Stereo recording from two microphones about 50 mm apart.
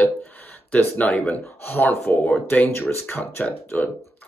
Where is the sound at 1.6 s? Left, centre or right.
Left.